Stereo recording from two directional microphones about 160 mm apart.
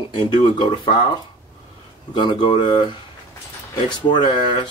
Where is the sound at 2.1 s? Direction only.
30° left (ahead or behind).